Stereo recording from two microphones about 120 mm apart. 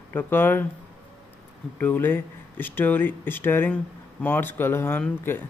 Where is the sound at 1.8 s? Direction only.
15° left (ahead or behind).